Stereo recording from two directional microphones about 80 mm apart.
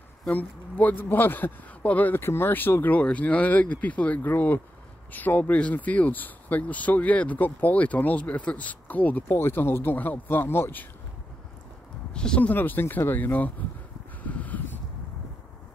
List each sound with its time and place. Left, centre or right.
0.3 s speech: left
12.1 s speech: centre
14.2 s a sound: centre